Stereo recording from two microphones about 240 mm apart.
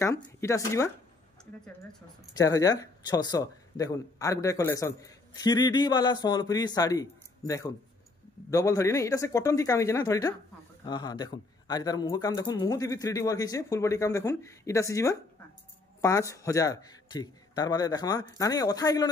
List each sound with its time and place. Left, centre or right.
0.0 s speech: centre
2.3 s speech: centre